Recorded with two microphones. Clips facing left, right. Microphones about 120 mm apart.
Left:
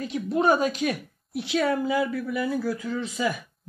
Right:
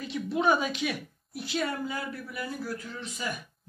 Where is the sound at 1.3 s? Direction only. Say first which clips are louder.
Left 7 dB; 75° left (ahead or behind).